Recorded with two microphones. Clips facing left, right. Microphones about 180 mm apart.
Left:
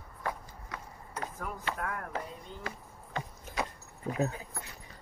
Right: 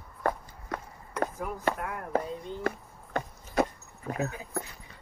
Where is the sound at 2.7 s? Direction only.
55° right (ahead or behind).